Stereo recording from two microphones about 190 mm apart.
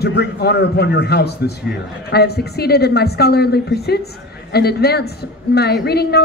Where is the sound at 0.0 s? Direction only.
60° left (ahead or behind).